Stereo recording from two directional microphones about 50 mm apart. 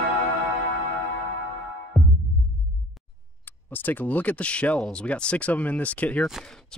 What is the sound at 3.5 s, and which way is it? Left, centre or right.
Speech, left.